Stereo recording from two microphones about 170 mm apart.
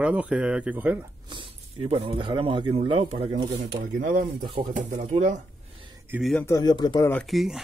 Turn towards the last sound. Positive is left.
turn(degrees=0)  # may be behind; listen again after turning